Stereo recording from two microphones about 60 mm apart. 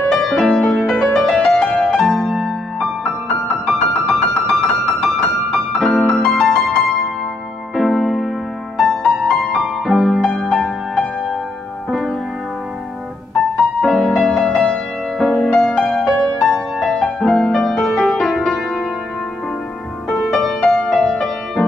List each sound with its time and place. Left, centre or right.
0.1 s music: centre
13.6 s music: centre
20.1 s music: centre